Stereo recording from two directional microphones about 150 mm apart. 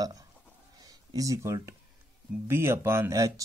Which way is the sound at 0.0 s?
25° right (ahead or behind).